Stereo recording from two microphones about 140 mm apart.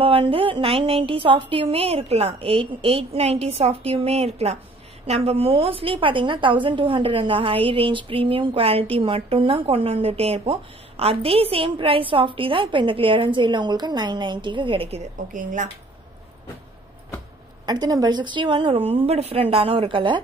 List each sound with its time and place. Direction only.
0.0 s a sound: 40° right (ahead or behind)
5.0 s a woman's voice: 50° right (ahead or behind)
15.3 s speech: 65° right (ahead or behind)
17.6 s a woman's voice: 30° right (ahead or behind)